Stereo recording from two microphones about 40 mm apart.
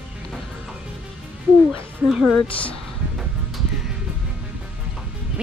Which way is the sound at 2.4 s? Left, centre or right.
Left.